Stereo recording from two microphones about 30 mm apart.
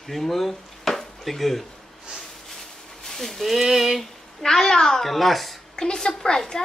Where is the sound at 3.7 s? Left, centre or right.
Centre.